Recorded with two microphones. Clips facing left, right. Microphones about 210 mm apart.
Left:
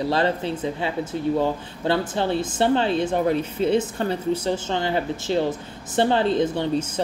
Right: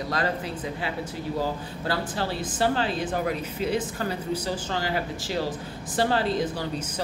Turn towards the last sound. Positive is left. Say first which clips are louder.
# left 5 dB
turn(degrees=25)  # may be behind; listen again after turning